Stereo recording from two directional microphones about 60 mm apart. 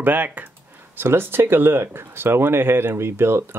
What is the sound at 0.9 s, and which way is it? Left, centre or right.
Speech, right.